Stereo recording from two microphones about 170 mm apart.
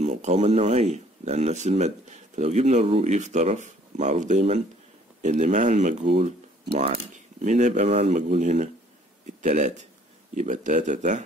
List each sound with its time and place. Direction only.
0.0 s speech: 40° right (ahead or behind)
7.4 s speech: 45° right (ahead or behind)